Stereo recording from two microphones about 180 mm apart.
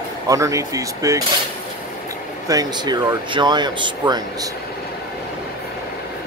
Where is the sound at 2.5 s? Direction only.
20° right (ahead or behind).